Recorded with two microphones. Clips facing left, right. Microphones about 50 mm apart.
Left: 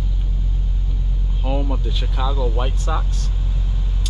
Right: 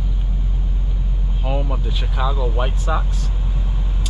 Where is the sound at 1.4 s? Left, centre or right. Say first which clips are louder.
Even; centre.